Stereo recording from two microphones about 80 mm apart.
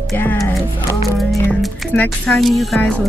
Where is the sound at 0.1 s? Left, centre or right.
Left.